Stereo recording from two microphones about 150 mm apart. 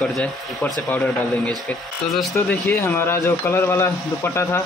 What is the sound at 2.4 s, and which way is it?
Speech, 85° left.